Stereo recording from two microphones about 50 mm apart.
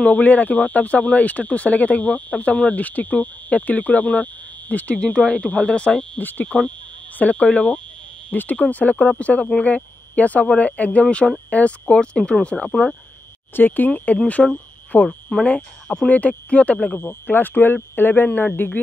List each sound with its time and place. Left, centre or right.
0.0 s speech: left
6.1 s speech: left
6.4 s speech: left
11.9 s speech: centre
13.6 s speech: left
15.0 s speech: centre
16.1 s speech: left
17.0 s speech: left